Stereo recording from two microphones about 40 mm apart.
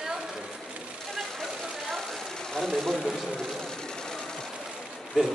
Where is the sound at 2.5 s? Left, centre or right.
Centre.